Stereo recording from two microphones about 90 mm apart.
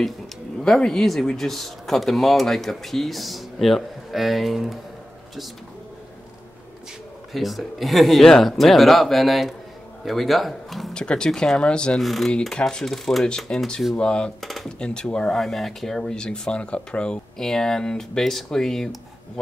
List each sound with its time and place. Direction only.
0.7 s speech: 5° left (ahead or behind)
7.3 s speech: centre (ahead or behind)